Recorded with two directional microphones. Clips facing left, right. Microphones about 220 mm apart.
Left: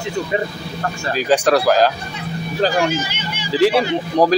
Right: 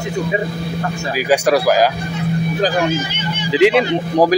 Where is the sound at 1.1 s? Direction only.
10° right (ahead or behind).